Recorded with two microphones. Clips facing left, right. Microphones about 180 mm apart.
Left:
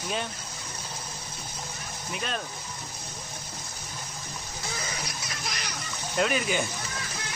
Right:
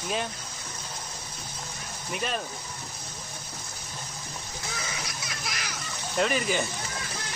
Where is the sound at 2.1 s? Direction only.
Centre (ahead or behind).